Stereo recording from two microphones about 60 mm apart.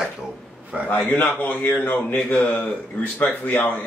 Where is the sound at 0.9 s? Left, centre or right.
Left.